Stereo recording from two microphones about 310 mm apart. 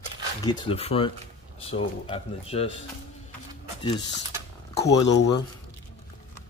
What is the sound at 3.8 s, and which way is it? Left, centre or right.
Speech, centre.